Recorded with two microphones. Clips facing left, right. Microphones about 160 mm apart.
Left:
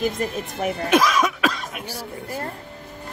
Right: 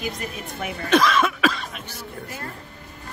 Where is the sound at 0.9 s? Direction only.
10° left (ahead or behind).